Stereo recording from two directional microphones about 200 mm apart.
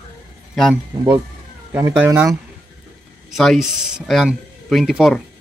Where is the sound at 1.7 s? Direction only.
15° right (ahead or behind).